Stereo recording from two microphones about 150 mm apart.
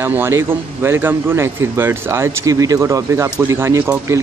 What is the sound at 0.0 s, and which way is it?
Speech, 15° right (ahead or behind).